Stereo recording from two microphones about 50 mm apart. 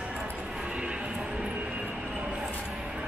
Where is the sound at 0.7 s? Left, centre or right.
Centre.